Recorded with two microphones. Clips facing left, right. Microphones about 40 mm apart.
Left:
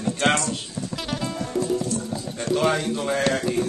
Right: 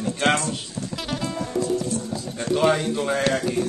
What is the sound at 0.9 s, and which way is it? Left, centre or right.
Music, centre.